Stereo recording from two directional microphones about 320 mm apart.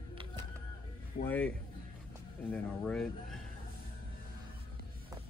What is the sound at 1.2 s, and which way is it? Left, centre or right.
Speech, left.